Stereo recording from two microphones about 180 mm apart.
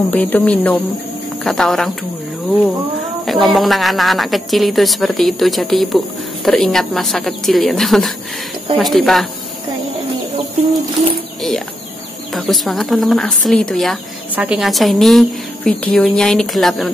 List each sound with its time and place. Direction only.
0.1 s a woman's voice: 10° left (ahead or behind)
3.3 s a woman's voice: centre (ahead or behind)
12.4 s a woman's voice: centre (ahead or behind)